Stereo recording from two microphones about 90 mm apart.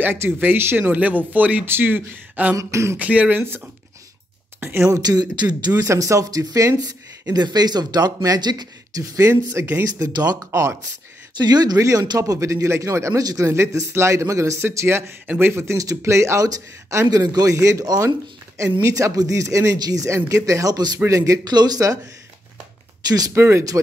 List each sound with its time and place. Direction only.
0.0 s speech: 25° right (ahead or behind)
2.5 s speech: 35° right (ahead or behind)
3.0 s speech: 15° right (ahead or behind)
5.0 s speech: 50° right (ahead or behind)
5.8 s speech: 35° right (ahead or behind)
9.9 s speech: 45° right (ahead or behind)
10.4 s speech: 35° right (ahead or behind)
11.3 s speech: 50° right (ahead or behind)
21.5 s speech: 50° right (ahead or behind)
23.0 s speech: 45° right (ahead or behind)
23.3 s speech: 30° right (ahead or behind)